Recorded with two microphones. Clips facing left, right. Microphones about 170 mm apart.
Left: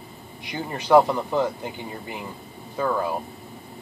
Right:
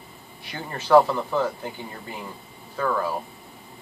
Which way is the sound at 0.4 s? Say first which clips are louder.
Left 4 dB; 15° left (ahead or behind).